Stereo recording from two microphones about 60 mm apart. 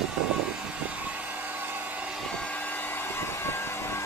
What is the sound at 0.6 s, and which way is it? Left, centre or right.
Vehicle, right.